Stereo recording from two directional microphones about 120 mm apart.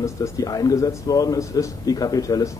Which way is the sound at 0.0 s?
25° left (ahead or behind).